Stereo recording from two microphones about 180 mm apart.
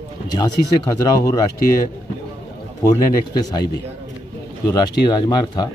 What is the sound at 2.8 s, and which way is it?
Speech, 20° left (ahead or behind).